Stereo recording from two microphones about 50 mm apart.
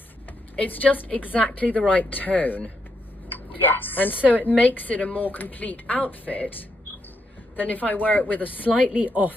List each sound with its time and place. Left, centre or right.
0.6 s a woman's voice: left
7.5 s a woman's voice: left
8.9 s speech: right